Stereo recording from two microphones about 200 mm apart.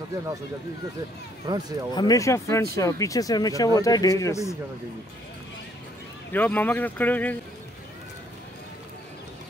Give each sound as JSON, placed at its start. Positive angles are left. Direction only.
{"t": 1.4, "sound": "speech", "side_deg": -20}
{"t": 2.0, "sound": "speech", "side_deg": 15}
{"t": 6.3, "sound": "speech", "side_deg": 10}